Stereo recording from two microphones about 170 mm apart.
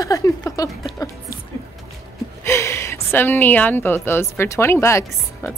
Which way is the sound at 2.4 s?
15° left (ahead or behind).